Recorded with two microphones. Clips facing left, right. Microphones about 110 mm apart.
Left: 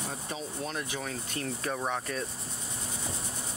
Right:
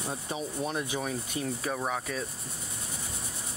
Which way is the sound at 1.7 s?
Centre (ahead or behind).